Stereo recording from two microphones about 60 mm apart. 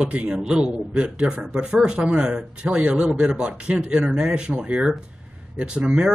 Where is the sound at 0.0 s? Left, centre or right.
Centre.